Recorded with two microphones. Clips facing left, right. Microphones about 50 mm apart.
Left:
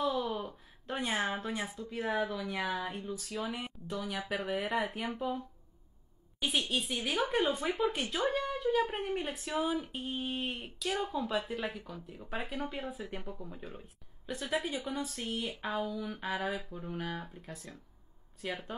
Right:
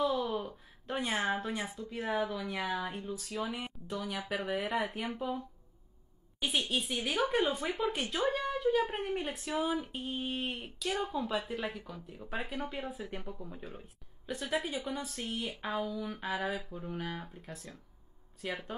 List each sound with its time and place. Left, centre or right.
0.8 s speech: centre
6.7 s speech: centre